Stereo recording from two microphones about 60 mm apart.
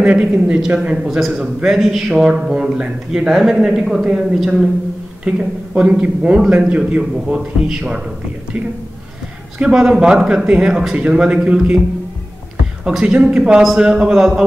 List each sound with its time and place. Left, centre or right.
0.0 s a man's voice: right
1.0 s a man's voice: centre
5.2 s a man's voice: centre
9.6 s a man's voice: centre
12.8 s a man's voice: centre